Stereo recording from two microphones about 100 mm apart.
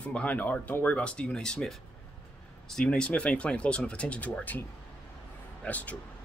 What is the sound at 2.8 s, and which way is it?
Speech, 10° left (ahead or behind).